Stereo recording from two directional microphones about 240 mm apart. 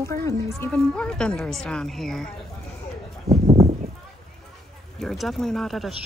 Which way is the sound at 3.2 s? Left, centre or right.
Right.